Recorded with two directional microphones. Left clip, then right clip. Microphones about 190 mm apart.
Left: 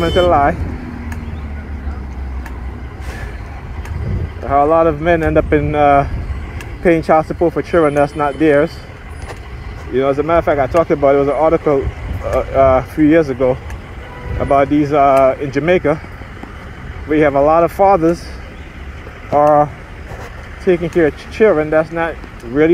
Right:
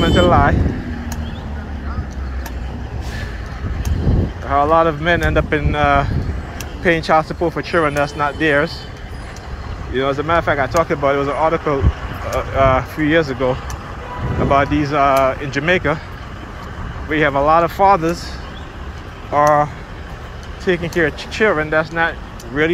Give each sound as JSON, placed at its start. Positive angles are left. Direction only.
{"t": 0.0, "sound": "speech", "side_deg": 45}
{"t": 4.5, "sound": "speech", "side_deg": 45}
{"t": 7.3, "sound": "speech", "side_deg": 40}
{"t": 9.9, "sound": "speech", "side_deg": 40}
{"t": 17.1, "sound": "speech", "side_deg": 40}
{"t": 19.3, "sound": "speech", "side_deg": 50}